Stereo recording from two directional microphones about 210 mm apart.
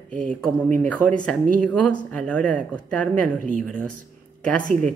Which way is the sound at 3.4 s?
40° right (ahead or behind).